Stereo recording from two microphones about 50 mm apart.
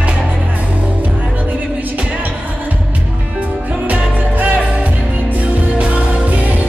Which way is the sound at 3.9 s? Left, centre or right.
Right.